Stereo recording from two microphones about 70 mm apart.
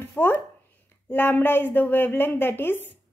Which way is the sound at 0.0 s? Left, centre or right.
Left.